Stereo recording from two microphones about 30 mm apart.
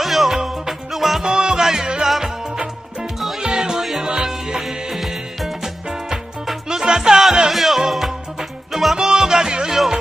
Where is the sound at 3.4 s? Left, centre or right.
Right.